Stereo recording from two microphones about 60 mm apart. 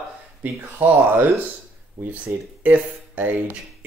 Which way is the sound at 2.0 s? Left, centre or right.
Right.